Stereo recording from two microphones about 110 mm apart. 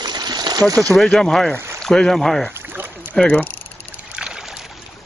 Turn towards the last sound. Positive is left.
turn(degrees=-5)  # may be behind; listen again after turning